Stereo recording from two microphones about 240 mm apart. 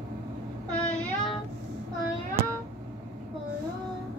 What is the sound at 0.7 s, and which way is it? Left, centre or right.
Child singing, centre.